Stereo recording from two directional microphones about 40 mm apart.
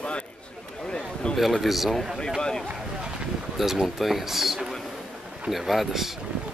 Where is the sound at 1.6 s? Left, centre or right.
Centre.